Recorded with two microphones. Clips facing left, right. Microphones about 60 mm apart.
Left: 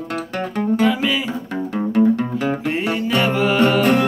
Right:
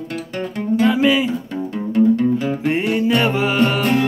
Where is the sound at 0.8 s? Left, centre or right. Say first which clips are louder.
Right 6 dB; centre.